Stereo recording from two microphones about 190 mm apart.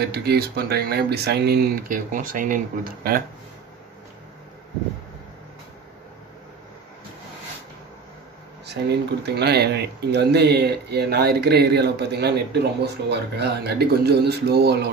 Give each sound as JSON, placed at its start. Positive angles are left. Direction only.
{"t": 0.0, "sound": "speech", "side_deg": -55}
{"t": 8.6, "sound": "speech", "side_deg": -60}